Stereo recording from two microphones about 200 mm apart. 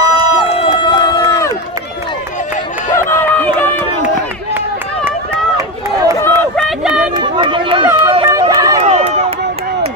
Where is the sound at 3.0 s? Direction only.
10° left (ahead or behind).